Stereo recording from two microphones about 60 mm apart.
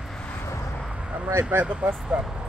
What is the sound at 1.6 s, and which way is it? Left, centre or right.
Speech, right.